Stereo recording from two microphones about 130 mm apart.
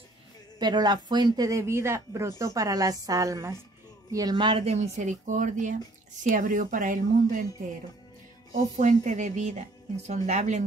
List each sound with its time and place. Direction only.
0.6 s speech: 35° right (ahead or behind); by 5.8 s 75° right (ahead or behind)
6.2 s speech: 85° right
8.7 s speech: 70° right (ahead or behind)